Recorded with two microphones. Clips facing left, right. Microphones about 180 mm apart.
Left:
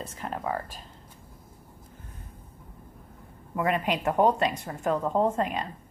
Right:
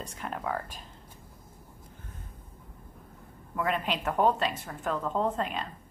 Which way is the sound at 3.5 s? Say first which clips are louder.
Left 3 dB; 5° left (ahead or behind).